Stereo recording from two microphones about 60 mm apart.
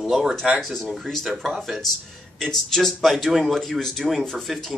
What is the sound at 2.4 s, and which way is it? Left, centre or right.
Speech, centre.